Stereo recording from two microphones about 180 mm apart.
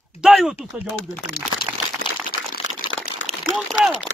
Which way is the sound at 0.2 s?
5° right (ahead or behind).